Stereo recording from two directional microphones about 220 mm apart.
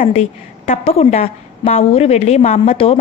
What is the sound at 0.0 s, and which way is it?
A woman's voice, 30° left (ahead or behind).